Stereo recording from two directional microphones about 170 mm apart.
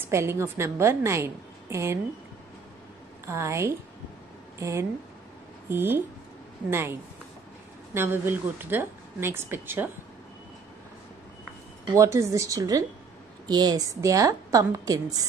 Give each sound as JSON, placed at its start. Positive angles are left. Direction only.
{"t": 0.0, "sound": "speech", "side_deg": -15}
{"t": 3.3, "sound": "speech", "side_deg": -15}
{"t": 11.9, "sound": "a woman's voice", "side_deg": -15}